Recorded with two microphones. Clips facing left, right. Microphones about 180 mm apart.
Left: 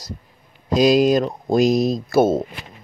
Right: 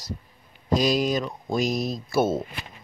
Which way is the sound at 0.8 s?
90° left.